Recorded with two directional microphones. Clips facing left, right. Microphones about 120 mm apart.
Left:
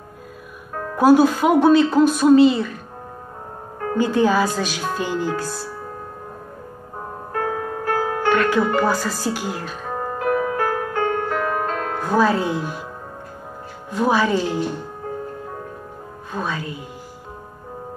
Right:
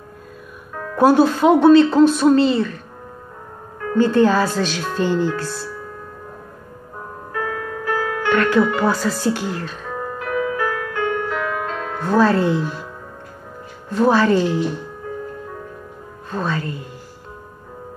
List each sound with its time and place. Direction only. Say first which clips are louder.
0.9 s a man's voice: even; 5° left (ahead or behind)
3.9 s a man's voice: right 3 dB; 10° left (ahead or behind)
7.3 s music: left 1 dB; 35° left (ahead or behind)
8.4 s speech: right 4 dB; 5° left (ahead or behind)
9.8 s music: left 6 dB; 30° left (ahead or behind)
12.0 s a man's voice: right 3 dB; 10° left (ahead or behind)
13.8 s a man's voice: right 3 dB; 10° left (ahead or behind)
16.3 s a man's voice: right 3 dB; 10° left (ahead or behind)